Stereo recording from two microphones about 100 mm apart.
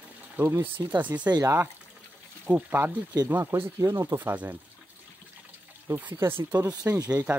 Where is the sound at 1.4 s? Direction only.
30° right (ahead or behind).